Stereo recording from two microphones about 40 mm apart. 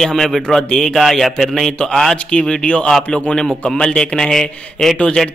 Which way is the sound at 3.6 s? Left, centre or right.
Centre.